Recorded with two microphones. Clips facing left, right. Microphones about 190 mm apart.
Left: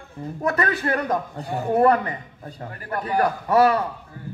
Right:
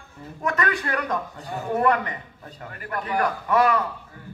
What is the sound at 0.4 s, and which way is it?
A man's voice, 35° left (ahead or behind).